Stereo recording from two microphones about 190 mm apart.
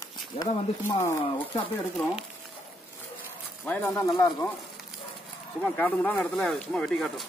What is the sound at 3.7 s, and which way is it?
Speech, 15° left (ahead or behind).